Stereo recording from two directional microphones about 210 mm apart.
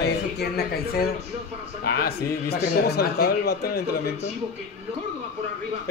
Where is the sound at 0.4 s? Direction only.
50° left (ahead or behind).